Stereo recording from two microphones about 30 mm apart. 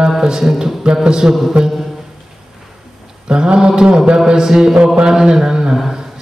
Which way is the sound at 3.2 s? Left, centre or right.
Right.